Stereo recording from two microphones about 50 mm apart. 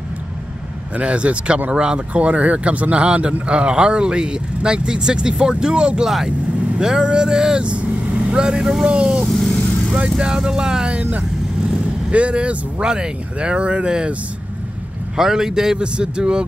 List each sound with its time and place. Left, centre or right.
0.9 s speech: right
6.0 s speech: centre
8.1 s vehicle: centre
8.8 s speech: centre
9.4 s vehicle: centre
10.1 s speech: centre
11.0 s speech: right
15.1 s speech: centre